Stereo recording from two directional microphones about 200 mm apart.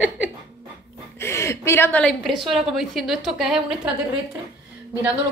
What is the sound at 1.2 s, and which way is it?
A woman's voice, 15° left (ahead or behind).